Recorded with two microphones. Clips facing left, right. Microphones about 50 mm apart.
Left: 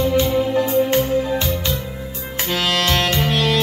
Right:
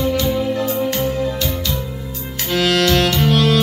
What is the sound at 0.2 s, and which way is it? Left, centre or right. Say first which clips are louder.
Music: left 1 dB; left.